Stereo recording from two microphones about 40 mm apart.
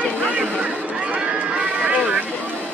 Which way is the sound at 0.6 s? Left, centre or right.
Right.